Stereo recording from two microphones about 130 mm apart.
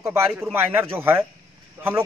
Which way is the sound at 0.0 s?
20° right (ahead or behind).